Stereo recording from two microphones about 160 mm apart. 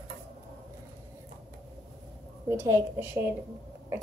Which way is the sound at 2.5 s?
15° right (ahead or behind).